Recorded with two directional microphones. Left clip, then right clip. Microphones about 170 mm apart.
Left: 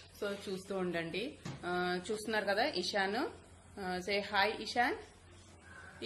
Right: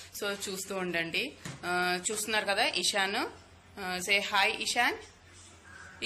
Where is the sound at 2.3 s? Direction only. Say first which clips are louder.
Right 5 dB; 30° left (ahead or behind).